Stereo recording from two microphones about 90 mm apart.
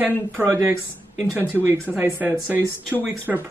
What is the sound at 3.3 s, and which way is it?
Speech, 10° right (ahead or behind).